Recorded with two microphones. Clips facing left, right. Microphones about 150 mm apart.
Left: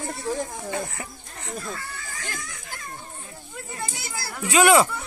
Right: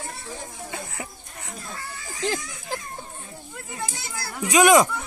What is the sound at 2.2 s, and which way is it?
Speech, 90° right.